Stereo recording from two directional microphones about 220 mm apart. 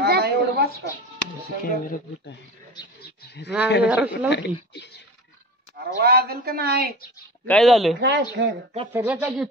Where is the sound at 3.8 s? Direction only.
5° right (ahead or behind).